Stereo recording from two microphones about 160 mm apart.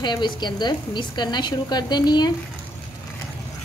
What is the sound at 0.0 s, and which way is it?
A woman's voice, 30° left (ahead or behind).